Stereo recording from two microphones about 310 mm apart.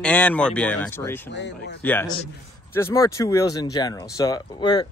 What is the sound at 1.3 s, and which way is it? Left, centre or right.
Speech, left.